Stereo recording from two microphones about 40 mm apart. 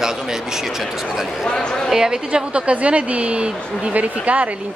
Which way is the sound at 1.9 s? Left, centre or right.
Centre.